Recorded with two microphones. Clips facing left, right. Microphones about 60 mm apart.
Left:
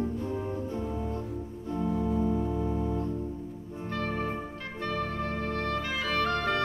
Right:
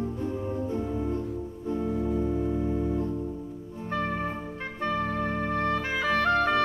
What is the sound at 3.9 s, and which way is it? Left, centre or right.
Music, right.